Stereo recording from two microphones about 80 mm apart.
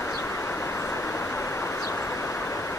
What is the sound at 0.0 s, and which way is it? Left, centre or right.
Vehicle, left.